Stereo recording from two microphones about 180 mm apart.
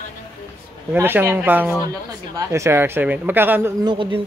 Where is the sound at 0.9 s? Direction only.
10° right (ahead or behind).